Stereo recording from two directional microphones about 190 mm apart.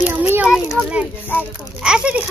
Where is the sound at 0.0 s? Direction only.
10° right (ahead or behind).